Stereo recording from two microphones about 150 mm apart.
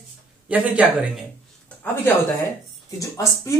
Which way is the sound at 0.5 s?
10° right (ahead or behind).